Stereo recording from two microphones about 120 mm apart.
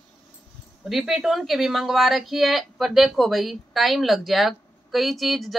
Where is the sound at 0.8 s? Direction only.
5° right (ahead or behind).